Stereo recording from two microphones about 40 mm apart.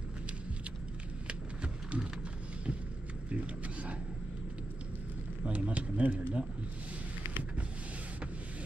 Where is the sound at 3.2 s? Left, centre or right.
Right.